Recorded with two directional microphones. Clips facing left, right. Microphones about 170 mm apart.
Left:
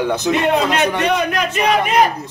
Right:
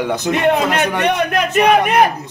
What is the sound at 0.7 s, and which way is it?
A man's voice, 55° right (ahead or behind).